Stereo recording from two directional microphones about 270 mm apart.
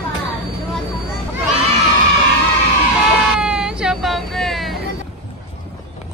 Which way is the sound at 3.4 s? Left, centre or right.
Centre.